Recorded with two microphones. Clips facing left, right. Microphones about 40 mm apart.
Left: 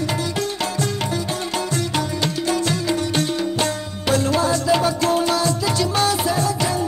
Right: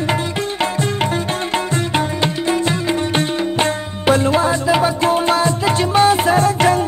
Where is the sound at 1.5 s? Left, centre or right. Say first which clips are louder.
Right 4 dB; right.